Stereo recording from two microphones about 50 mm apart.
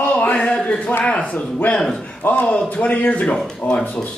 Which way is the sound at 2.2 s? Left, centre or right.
Left.